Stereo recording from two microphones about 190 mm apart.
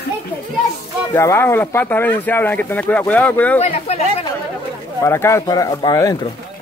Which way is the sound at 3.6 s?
35° left (ahead or behind).